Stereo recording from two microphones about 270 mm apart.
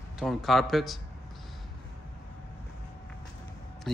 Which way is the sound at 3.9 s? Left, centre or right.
Centre.